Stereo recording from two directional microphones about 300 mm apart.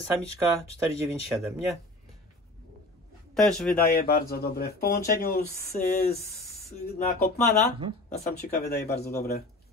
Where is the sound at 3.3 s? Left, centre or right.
Centre.